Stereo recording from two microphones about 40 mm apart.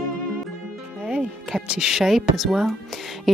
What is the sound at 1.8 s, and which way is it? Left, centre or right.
Speech, centre.